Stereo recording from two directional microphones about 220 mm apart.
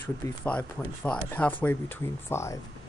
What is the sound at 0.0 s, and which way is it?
Speech, 5° left (ahead or behind).